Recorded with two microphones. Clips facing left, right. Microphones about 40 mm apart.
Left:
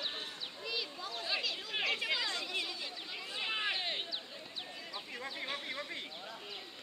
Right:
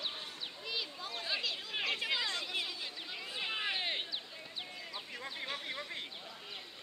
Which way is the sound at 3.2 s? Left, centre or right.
Centre.